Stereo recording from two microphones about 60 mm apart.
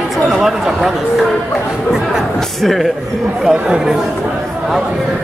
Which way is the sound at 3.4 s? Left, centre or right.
Centre.